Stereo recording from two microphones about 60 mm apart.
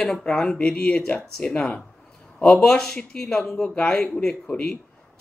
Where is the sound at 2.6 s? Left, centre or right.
Centre.